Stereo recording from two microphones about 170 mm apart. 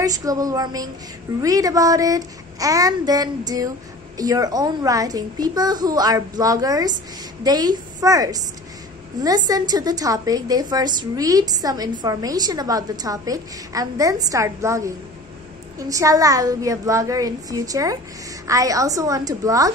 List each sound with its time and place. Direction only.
0.0 s a woman's voice: 20° right (ahead or behind)